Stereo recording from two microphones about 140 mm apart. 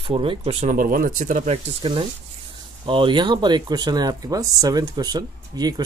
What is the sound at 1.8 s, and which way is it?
Speech, 40° right (ahead or behind).